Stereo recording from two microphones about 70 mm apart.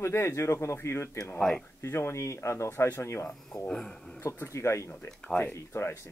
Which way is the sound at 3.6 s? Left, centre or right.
Centre.